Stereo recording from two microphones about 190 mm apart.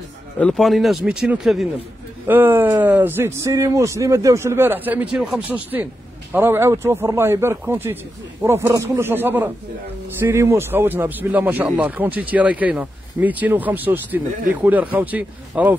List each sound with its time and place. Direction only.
0.4 s speech: centre (ahead or behind)